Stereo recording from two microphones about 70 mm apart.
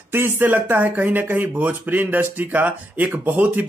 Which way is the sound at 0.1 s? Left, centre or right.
Right.